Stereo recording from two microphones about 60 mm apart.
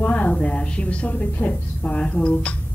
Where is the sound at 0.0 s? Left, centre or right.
Left.